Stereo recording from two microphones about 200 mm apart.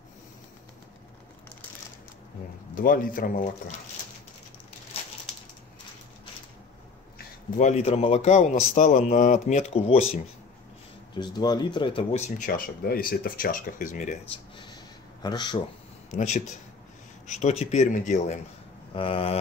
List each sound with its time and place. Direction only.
2.7 s speech: 45° left (ahead or behind)
7.5 s a man's voice: 35° left (ahead or behind)
12.4 s speech: 45° left (ahead or behind)
15.2 s speech: 20° left (ahead or behind)
16.1 s a man's voice: 35° left (ahead or behind)